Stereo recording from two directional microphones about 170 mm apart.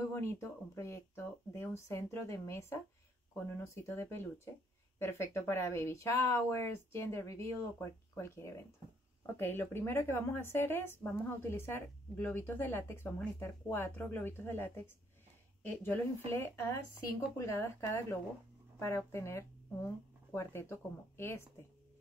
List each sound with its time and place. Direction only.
0.1 s a woman's voice: 15° left (ahead or behind)